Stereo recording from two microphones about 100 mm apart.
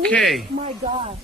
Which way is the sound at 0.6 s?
60° right (ahead or behind).